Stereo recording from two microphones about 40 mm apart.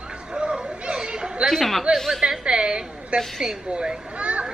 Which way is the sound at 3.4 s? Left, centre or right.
Centre.